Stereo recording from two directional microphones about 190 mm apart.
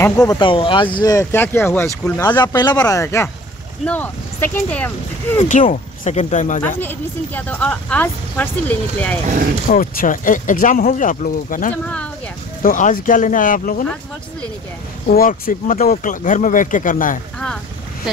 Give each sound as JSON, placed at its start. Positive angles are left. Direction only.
{"t": 0.0, "sound": "speech", "side_deg": 15}
{"t": 5.4, "sound": "speech", "side_deg": 40}
{"t": 6.8, "sound": "speech", "side_deg": 10}
{"t": 9.7, "sound": "speech", "side_deg": 50}
{"t": 11.7, "sound": "speech", "side_deg": 5}
{"t": 12.6, "sound": "speech", "side_deg": 45}
{"t": 15.0, "sound": "speech", "side_deg": 50}